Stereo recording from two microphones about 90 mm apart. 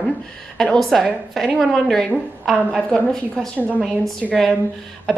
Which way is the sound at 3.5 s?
20° right (ahead or behind).